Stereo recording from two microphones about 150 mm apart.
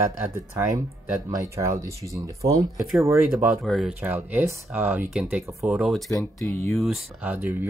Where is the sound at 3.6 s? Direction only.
Centre (ahead or behind).